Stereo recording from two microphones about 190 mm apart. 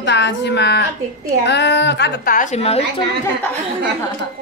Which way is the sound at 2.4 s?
35° left (ahead or behind).